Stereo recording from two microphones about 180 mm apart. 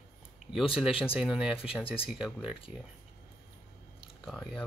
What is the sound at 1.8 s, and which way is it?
Speech, 30° left (ahead or behind).